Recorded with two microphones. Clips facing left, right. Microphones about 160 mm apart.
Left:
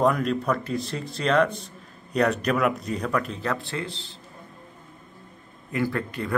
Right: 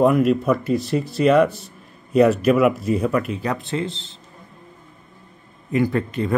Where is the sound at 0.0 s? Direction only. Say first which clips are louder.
Right 6 dB; 5° right (ahead or behind).